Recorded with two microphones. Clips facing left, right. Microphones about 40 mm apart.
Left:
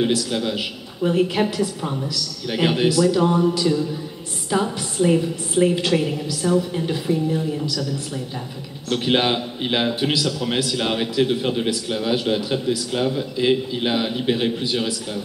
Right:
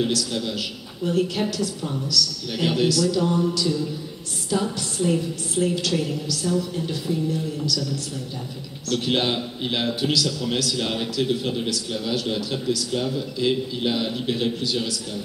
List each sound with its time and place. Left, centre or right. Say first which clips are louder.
0.0 s a woman's voice: left 3 dB; left